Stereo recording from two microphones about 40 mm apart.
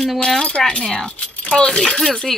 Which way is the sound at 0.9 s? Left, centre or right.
Left.